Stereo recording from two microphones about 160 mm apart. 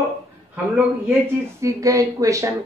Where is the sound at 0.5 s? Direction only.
10° right (ahead or behind).